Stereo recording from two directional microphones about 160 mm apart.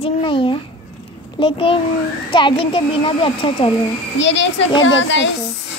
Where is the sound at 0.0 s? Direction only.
30° left (ahead or behind).